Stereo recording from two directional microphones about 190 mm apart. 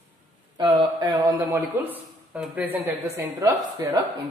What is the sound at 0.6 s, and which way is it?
Speech, 20° right (ahead or behind).